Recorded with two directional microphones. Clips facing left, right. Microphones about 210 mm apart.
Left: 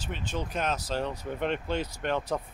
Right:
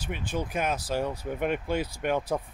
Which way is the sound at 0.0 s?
10° right (ahead or behind).